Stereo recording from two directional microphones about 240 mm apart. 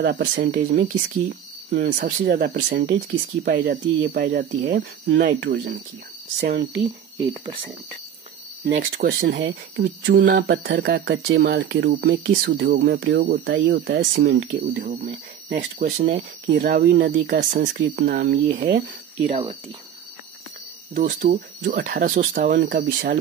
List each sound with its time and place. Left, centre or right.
0.0 s speech: right
8.6 s speech: right
9.8 s speech: right
20.9 s speech: right